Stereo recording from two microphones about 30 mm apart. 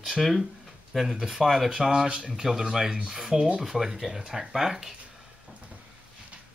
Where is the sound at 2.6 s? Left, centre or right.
Centre.